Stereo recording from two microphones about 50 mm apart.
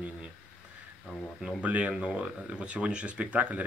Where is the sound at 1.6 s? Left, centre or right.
Right.